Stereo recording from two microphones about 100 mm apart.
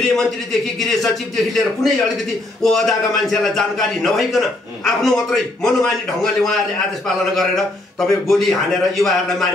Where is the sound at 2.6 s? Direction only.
5° left (ahead or behind).